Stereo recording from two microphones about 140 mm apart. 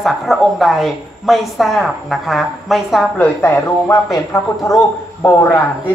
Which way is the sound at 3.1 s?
15° left (ahead or behind).